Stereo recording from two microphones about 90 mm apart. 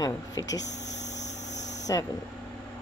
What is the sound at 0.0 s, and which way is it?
Speech, 40° left (ahead or behind).